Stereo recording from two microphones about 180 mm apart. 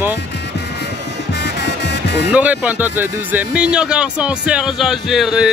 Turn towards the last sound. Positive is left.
turn(degrees=0)  # may be behind; listen again after turning